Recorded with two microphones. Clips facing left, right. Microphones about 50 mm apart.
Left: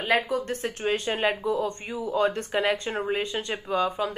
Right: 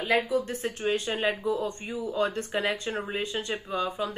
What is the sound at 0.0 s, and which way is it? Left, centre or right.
A woman's voice, left.